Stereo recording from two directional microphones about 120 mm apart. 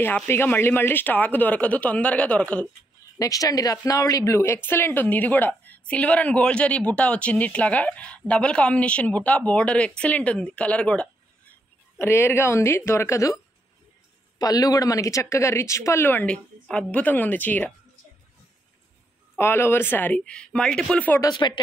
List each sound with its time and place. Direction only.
0.0 s speech: 20° left (ahead or behind)
3.2 s speech: 30° left (ahead or behind); by 11.1 s 10° left (ahead or behind)
12.0 s speech: 20° left (ahead or behind)
14.4 s speech: 30° left (ahead or behind); by 17.7 s 15° left (ahead or behind)
19.3 s speech: 20° left (ahead or behind)
21.2 s speech: 35° left (ahead or behind)